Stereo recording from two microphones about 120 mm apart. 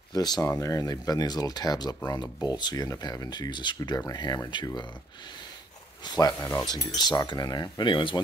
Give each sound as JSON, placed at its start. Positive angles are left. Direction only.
{"t": 0.1, "sound": "speech", "side_deg": 35}
{"t": 6.0, "sound": "speech", "side_deg": 30}